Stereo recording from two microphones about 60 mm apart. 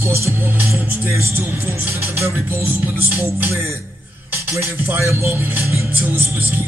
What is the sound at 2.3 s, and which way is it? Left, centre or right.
Speech, right.